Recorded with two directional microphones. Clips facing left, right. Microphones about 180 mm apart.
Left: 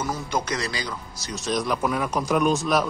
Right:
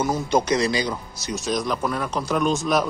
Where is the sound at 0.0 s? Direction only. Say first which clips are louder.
Right 6 dB; 20° right (ahead or behind).